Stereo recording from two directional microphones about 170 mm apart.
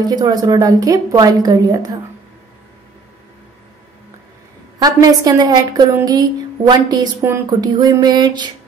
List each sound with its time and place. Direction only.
0.0 s speech: 25° right (ahead or behind)
4.8 s speech: 20° right (ahead or behind)